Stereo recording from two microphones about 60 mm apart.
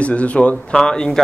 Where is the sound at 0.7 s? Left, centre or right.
Centre.